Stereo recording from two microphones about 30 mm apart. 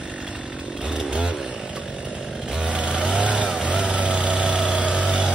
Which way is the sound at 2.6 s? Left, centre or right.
Right.